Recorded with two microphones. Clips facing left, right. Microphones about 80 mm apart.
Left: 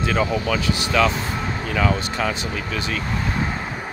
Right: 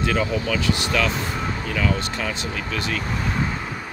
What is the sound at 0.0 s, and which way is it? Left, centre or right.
Speech, centre.